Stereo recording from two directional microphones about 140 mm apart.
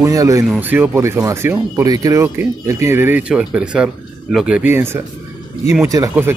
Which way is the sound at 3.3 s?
5° right (ahead or behind).